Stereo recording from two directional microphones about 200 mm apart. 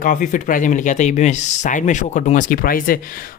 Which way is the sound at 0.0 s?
40° left (ahead or behind).